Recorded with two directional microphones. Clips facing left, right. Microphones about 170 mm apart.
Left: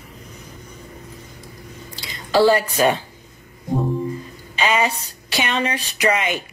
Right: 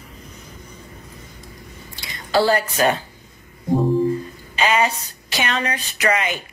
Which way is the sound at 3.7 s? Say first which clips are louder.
Right 4 dB; centre (ahead or behind).